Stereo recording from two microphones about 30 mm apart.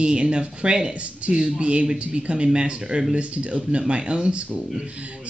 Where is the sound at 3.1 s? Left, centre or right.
Right.